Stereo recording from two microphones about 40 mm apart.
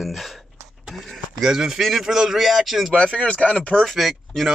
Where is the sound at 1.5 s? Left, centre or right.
Centre.